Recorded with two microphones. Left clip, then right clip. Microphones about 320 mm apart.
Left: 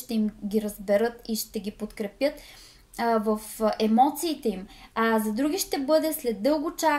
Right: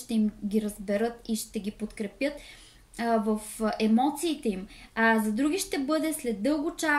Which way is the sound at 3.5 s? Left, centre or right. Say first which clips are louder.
Left 6 dB; left.